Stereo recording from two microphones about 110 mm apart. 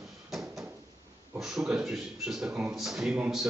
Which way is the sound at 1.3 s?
5° right (ahead or behind).